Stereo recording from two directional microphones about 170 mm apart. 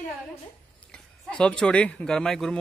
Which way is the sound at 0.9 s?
5° left (ahead or behind).